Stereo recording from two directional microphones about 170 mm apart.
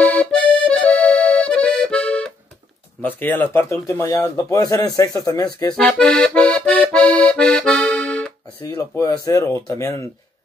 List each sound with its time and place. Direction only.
0.0 s accordion: 10° left (ahead or behind)
3.0 s speech: 10° left (ahead or behind)
5.8 s accordion: 5° left (ahead or behind)
8.6 s speech: 20° left (ahead or behind)